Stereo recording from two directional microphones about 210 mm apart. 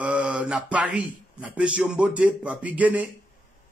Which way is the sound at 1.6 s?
5° right (ahead or behind).